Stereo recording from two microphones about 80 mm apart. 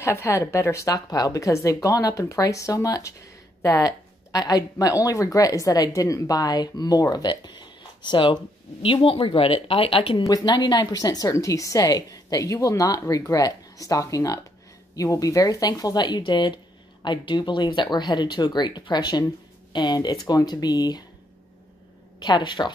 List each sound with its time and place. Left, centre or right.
0.0 s speech: left
10.4 s speech: left
17.9 s speech: left
22.2 s speech: left